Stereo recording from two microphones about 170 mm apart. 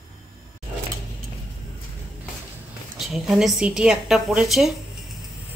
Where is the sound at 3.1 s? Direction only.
Centre (ahead or behind).